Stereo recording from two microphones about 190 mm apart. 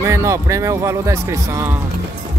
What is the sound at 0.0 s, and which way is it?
Speech, 15° right (ahead or behind).